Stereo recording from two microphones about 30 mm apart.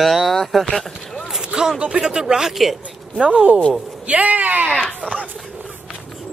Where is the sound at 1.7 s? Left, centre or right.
Right.